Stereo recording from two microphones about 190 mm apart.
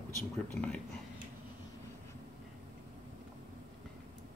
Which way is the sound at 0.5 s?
5° left (ahead or behind).